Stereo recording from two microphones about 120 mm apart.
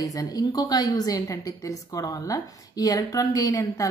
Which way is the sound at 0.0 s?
30° left (ahead or behind).